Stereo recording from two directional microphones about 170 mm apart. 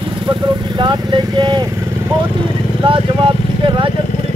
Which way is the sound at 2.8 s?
30° right (ahead or behind).